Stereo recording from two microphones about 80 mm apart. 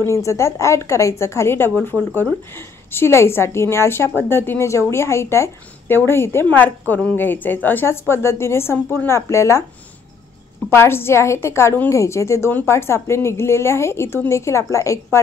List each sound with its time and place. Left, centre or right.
0.0 s a woman's voice: left
10.7 s a woman's voice: left